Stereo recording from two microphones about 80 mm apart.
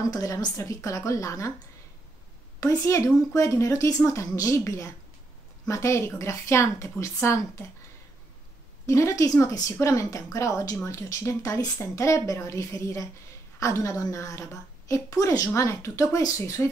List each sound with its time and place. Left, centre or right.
0.1 s a woman's voice: left
2.6 s a woman's voice: left
8.8 s a woman's voice: left